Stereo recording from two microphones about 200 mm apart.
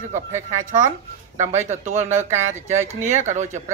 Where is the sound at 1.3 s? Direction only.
35° right (ahead or behind).